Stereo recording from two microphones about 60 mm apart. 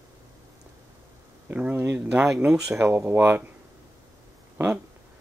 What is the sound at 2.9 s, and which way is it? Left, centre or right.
Speech, right.